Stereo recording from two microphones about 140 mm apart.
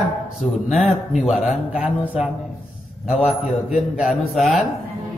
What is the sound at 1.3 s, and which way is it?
Speech, 5° right (ahead or behind).